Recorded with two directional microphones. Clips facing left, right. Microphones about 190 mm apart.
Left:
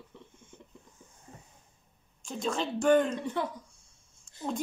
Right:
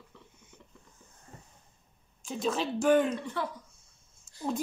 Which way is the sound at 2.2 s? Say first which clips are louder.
Right 1 dB; 5° right (ahead or behind).